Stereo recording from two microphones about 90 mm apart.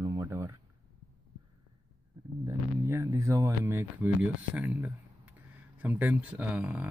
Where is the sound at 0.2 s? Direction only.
30° right (ahead or behind).